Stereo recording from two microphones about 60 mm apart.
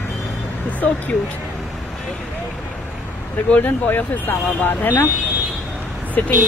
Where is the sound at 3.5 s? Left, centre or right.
Left.